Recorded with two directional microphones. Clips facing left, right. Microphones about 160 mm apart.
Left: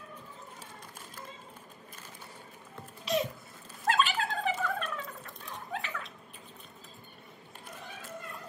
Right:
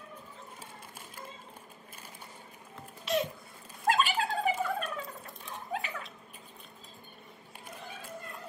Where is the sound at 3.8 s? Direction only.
10° right (ahead or behind).